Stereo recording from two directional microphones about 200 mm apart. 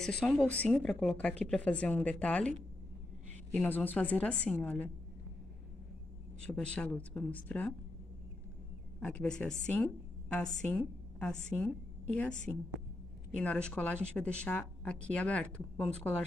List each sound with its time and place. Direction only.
0.2 s speech: 5° left (ahead or behind)
3.5 s a woman's voice: 10° left (ahead or behind)
6.4 s a woman's voice: 5° left (ahead or behind)
9.0 s a woman's voice: 5° left (ahead or behind)